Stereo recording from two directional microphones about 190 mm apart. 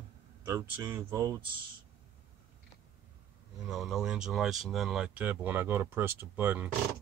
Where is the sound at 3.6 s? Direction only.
Centre (ahead or behind).